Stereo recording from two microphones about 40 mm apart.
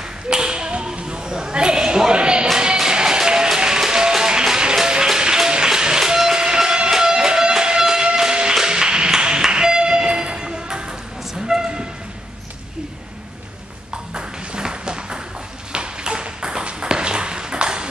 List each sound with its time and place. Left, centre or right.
0.3 s a sound: centre
2.8 s music: centre
11.4 s train: centre
14.1 s music: right
15.7 s ping: right